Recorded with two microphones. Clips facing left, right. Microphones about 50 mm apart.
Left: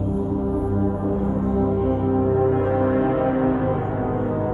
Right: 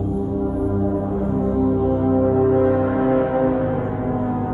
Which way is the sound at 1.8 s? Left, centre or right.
Left.